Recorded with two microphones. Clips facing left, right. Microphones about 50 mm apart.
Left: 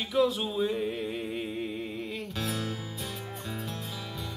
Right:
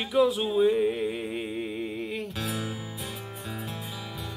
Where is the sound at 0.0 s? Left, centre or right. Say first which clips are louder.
Right 3 dB; centre.